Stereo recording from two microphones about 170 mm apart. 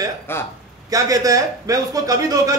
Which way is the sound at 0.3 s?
15° left (ahead or behind).